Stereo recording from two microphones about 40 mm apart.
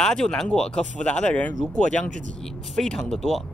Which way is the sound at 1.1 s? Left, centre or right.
Left.